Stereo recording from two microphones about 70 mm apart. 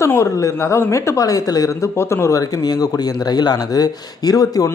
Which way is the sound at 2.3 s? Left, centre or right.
Left.